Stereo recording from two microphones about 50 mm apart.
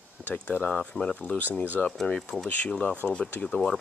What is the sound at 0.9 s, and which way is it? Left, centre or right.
Speech, centre.